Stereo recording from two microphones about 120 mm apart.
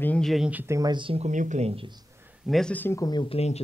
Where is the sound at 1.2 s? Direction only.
90° right.